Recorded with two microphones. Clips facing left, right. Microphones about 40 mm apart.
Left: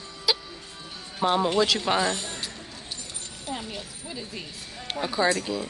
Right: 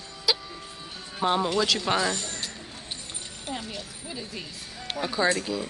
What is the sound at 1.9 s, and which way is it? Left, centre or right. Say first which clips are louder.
Speech: left 1 dB; centre.